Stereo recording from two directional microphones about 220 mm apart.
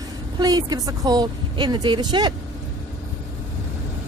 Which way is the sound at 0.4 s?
15° right (ahead or behind).